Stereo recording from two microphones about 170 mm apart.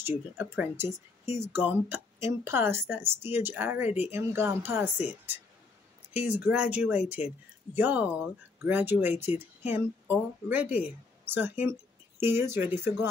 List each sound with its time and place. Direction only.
0.0 s a woman's voice: 10° right (ahead or behind)